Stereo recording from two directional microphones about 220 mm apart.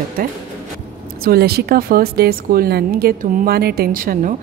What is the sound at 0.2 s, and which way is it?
Speech, 40° right (ahead or behind).